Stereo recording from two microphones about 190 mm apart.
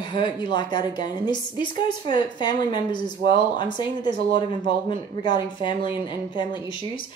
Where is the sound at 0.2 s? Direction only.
25° left (ahead or behind).